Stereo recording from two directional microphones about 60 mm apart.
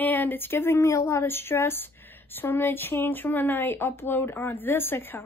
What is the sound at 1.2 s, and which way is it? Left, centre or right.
A woman's voice, left.